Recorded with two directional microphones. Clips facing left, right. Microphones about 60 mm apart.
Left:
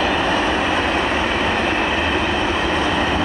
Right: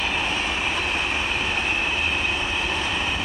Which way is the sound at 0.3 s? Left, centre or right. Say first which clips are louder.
Left 8 dB; left.